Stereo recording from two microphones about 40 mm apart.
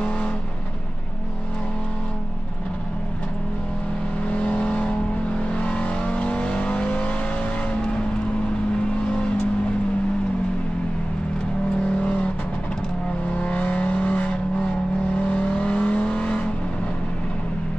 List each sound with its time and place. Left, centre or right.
4.3 s vehicle: left
12.0 s vehicle: left
13.4 s vehicle: left